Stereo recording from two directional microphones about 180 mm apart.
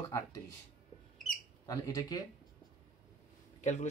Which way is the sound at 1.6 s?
20° left (ahead or behind).